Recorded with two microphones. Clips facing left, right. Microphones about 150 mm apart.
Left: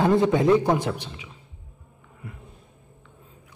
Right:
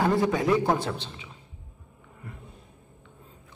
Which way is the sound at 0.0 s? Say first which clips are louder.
Left 4 dB; 25° left (ahead or behind).